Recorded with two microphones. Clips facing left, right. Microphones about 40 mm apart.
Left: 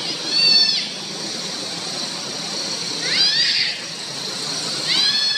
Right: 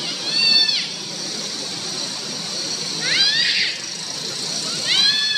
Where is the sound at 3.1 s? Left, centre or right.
Right.